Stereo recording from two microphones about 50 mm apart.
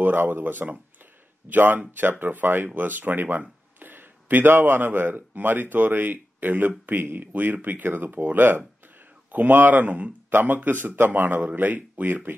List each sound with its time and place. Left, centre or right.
0.0 s speech: right